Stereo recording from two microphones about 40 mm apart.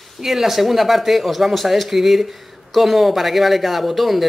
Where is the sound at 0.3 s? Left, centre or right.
Centre.